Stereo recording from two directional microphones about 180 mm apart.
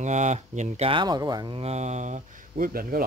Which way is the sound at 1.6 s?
40° right (ahead or behind).